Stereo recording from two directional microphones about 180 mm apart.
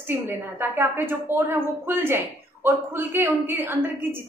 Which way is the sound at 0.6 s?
10° right (ahead or behind).